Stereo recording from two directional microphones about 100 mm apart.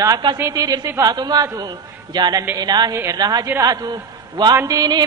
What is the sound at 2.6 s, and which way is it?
Music, 45° right (ahead or behind).